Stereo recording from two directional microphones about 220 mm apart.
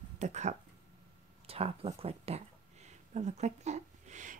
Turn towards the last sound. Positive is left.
turn(degrees=-35)  # may be behind; listen again after turning